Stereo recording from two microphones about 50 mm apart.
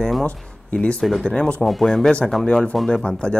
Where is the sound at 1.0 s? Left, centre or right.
Centre.